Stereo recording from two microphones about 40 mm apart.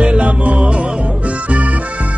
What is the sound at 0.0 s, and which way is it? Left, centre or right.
Music, right.